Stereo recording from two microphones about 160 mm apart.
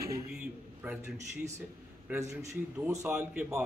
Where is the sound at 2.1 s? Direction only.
15° right (ahead or behind).